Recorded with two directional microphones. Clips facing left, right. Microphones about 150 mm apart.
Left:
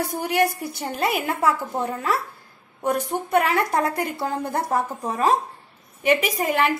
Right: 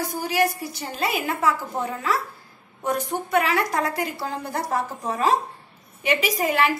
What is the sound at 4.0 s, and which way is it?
Speech, 55° left (ahead or behind).